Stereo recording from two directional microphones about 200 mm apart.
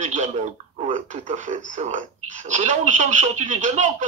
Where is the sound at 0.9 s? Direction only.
40° right (ahead or behind).